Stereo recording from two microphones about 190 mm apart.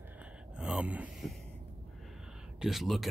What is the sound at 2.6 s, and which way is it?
Speech, centre (ahead or behind).